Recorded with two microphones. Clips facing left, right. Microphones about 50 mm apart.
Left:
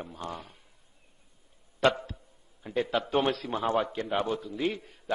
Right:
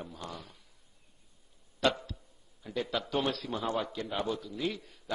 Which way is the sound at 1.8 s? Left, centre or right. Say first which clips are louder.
Left 4 dB; left.